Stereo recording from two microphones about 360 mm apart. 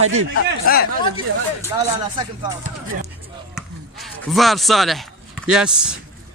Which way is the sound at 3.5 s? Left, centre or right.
Centre.